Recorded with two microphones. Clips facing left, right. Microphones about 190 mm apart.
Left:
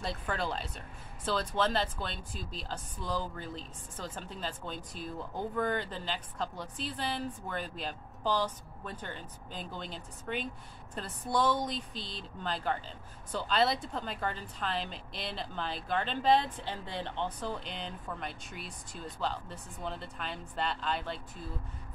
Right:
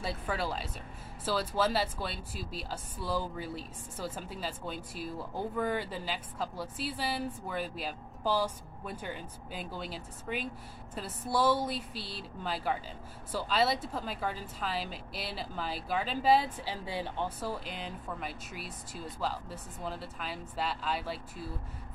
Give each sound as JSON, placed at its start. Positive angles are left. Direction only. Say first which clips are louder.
{"t": 0.0, "sound": "a woman's voice", "louder": "right 1 dB", "side_deg": -5}